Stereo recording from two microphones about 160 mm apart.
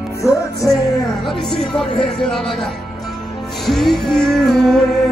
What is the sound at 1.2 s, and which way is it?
Music, centre (ahead or behind).